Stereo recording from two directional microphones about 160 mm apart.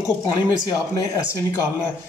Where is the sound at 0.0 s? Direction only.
20° left (ahead or behind).